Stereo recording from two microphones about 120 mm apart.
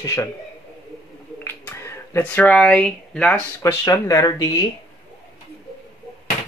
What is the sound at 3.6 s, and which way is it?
Speech, 30° left (ahead or behind).